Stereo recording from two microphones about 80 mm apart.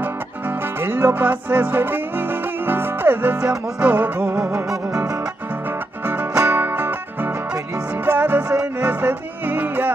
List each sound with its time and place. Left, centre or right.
0.0 s music: right
6.3 s music: right